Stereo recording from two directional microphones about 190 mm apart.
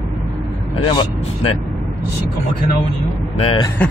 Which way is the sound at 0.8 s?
25° left (ahead or behind).